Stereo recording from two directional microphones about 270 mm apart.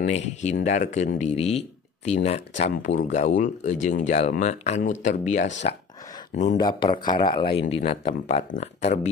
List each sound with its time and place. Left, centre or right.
0.0 s speech: left
5.6 s a sound: left
6.6 s speech: centre